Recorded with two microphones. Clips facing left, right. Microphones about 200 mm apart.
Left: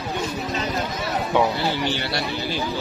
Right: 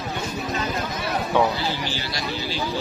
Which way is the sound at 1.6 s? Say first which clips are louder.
Left 4 dB; 60° left (ahead or behind).